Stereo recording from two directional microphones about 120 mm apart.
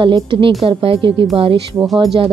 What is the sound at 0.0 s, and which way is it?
Speech, 45° right (ahead or behind).